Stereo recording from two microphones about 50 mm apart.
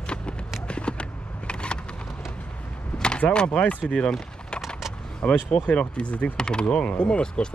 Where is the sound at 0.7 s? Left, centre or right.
Left.